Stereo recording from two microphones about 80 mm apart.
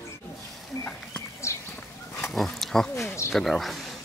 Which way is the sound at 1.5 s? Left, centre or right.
Left.